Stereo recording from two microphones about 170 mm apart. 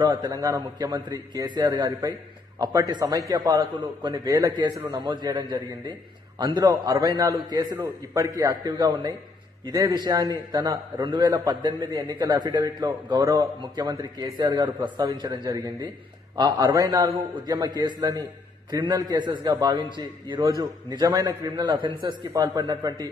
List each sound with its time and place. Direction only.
0.0 s a man's voice: 25° right (ahead or behind)